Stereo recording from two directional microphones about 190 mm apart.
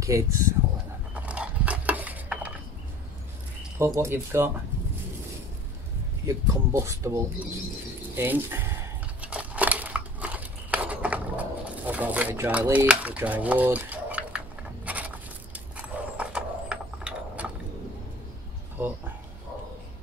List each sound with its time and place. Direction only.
0.0 s speech: 15° right (ahead or behind)
1.1 s a sound: 5° right (ahead or behind)
3.7 s speech: 15° right (ahead or behind)
6.2 s speech: 15° right (ahead or behind)
9.2 s scissors: 5° right (ahead or behind)
14.9 s a sound: 10° right (ahead or behind)